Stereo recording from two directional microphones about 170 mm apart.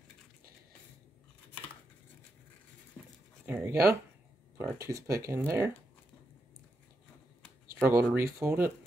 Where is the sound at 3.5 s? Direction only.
15° right (ahead or behind).